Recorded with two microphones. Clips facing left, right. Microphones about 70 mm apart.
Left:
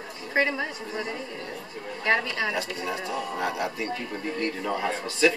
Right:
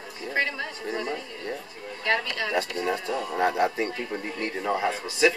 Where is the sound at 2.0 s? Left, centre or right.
Centre.